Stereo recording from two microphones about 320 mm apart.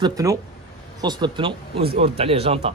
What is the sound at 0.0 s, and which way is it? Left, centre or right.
Speech, centre.